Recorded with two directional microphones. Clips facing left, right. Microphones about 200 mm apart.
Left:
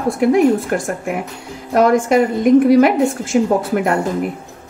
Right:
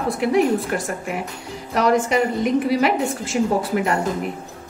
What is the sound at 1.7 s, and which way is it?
A woman's voice, 50° left (ahead or behind).